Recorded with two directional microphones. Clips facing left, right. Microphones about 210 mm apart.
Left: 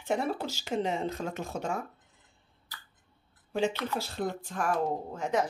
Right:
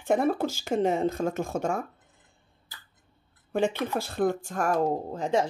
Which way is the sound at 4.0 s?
50° right (ahead or behind).